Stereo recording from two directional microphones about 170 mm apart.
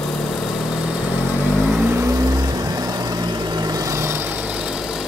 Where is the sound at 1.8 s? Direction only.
15° right (ahead or behind).